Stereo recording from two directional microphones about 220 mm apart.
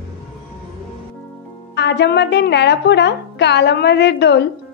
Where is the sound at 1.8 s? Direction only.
50° left (ahead or behind).